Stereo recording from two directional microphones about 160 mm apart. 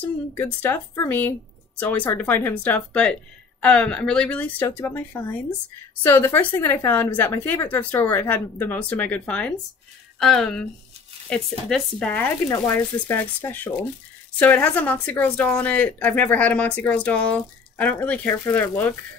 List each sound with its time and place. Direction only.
0.3 s a woman's voice: 15° left (ahead or behind)
12.4 s speech: 20° left (ahead or behind)
12.7 s a woman's voice: 10° left (ahead or behind)